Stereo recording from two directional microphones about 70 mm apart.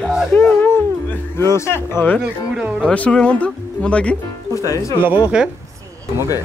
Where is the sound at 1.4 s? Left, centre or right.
Left.